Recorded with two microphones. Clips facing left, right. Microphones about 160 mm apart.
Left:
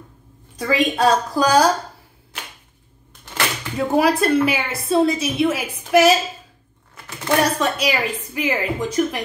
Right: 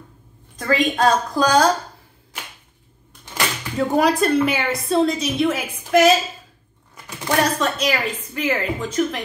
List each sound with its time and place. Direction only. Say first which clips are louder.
0.6 s a woman's voice: even; 10° left (ahead or behind)
3.7 s a woman's voice: even; 5° left (ahead or behind)
7.2 s a woman's voice: left 1 dB; 10° left (ahead or behind)